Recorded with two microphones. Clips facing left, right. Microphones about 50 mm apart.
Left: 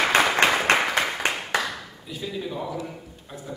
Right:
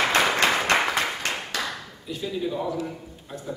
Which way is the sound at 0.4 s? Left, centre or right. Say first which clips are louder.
Left 2 dB; centre.